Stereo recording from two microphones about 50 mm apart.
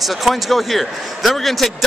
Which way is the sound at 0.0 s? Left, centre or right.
Centre.